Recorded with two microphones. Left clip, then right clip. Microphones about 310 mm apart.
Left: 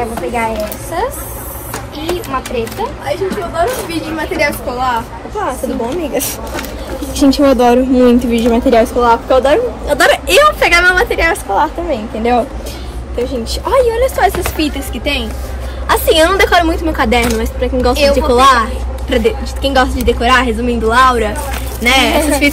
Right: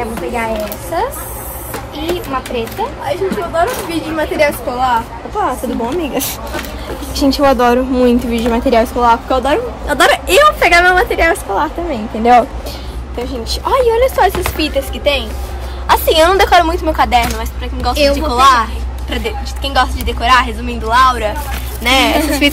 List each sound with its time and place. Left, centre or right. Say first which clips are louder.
0.3 s speech: even; centre
2.8 s a woman's voice: right 3 dB; centre
13.2 s a woman's voice: left 2 dB; centre